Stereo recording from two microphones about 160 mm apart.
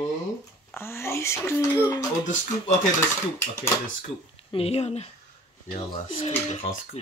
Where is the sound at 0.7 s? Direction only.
15° left (ahead or behind).